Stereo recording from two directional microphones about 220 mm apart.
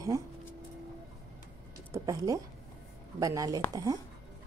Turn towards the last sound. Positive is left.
turn(degrees=-15)  # may be behind; listen again after turning